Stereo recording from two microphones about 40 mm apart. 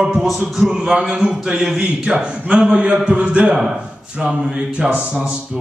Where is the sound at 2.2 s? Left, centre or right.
Right.